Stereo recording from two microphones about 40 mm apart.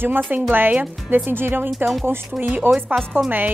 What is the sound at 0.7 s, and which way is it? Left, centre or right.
Speech, right.